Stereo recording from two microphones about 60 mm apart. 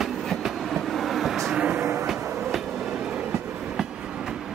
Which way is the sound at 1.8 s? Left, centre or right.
Right.